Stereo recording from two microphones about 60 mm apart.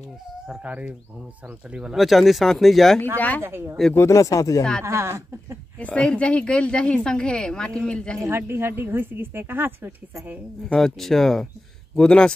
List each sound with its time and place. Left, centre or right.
0.7 s speech: right
2.0 s speech: centre
3.2 s speech: left
3.4 s speech: right
4.1 s speech: left
4.8 s speech: right
5.8 s a woman's voice: left
8.2 s a woman's voice: right
10.7 s a woman's voice: centre